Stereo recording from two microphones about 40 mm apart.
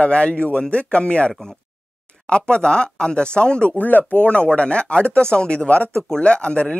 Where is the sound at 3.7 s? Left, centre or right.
Left.